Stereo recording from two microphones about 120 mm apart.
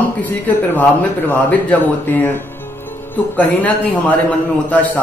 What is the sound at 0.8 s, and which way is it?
Speech, 15° left (ahead or behind).